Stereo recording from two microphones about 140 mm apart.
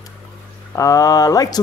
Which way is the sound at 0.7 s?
25° left (ahead or behind).